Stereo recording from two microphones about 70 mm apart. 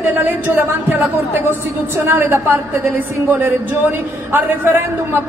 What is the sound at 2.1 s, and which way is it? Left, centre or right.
A woman's voice, right.